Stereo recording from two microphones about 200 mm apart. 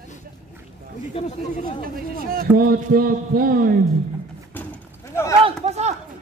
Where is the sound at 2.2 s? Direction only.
50° right (ahead or behind).